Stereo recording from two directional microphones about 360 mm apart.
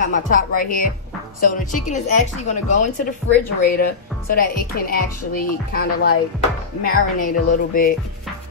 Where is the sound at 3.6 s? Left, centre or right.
Left.